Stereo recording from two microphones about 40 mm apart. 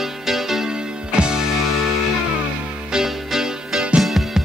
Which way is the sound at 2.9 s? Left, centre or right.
Centre.